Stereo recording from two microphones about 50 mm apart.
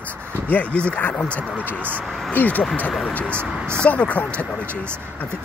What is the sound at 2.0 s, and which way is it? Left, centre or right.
Speech, centre.